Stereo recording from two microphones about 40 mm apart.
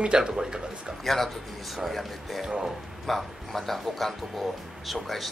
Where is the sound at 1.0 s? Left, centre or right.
Centre.